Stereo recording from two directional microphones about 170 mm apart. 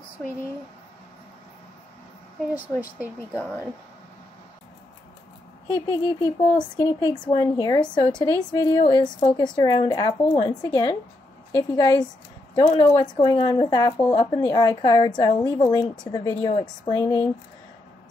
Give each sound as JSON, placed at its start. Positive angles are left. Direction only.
{"t": 3.3, "sound": "speech", "side_deg": 10}
{"t": 5.7, "sound": "speech", "side_deg": 20}